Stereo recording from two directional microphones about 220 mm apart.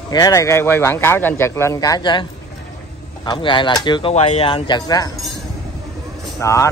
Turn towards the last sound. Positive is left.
turn(degrees=15)  # may be behind; listen again after turning